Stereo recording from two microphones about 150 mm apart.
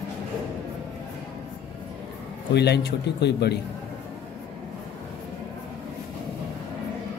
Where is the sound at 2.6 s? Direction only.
90° left.